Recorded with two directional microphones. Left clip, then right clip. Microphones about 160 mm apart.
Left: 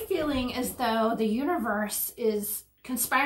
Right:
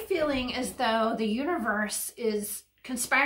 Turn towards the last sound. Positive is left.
turn(degrees=-20)  # may be behind; listen again after turning